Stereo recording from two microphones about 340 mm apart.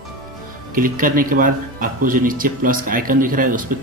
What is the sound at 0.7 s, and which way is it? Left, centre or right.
Speech, right.